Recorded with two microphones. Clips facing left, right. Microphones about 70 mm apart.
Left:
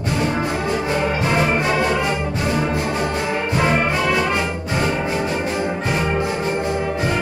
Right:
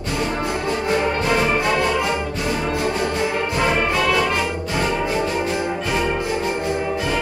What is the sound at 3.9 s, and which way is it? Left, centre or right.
Music, centre.